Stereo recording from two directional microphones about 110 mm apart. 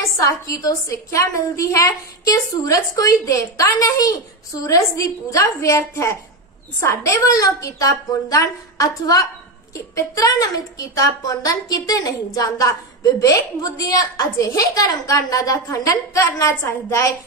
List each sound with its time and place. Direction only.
0.2 s a woman's voice: 30° left (ahead or behind)